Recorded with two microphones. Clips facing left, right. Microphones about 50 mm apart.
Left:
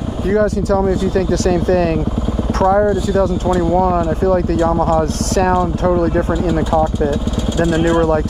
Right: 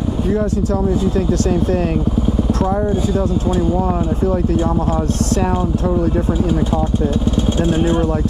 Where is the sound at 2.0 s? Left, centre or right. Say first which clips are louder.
Right 2 dB; left.